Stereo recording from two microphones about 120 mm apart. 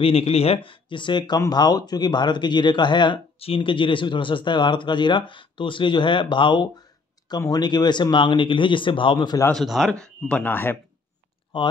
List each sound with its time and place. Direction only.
0.0 s speech: 55° left (ahead or behind)
0.7 s speech: 45° left (ahead or behind)
9.5 s speech: 5° left (ahead or behind)
11.5 s speech: 45° left (ahead or behind)